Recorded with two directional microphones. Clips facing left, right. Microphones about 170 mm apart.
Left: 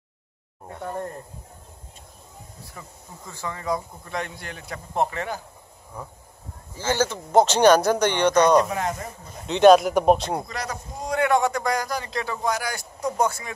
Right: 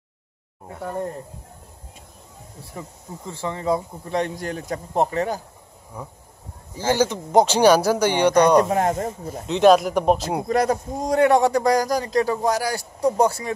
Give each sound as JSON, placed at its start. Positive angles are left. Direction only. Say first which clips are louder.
{"t": 0.7, "sound": "speech", "louder": "right 2 dB", "side_deg": -5}
{"t": 2.8, "sound": "a man's voice", "louder": "right 8 dB", "side_deg": -25}
{"t": 5.9, "sound": "speech", "louder": "right 2 dB", "side_deg": -10}
{"t": 8.6, "sound": "speech", "louder": "right 6 dB", "side_deg": -45}
{"t": 9.5, "sound": "speech", "louder": "left 1 dB", "side_deg": 0}
{"t": 10.4, "sound": "a man's voice", "louder": "right 12 dB", "side_deg": -50}